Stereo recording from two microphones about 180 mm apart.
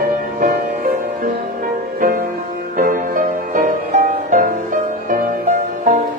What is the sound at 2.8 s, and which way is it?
Music, 50° right (ahead or behind).